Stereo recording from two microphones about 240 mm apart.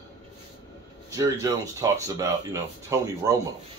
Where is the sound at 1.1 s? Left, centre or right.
Centre.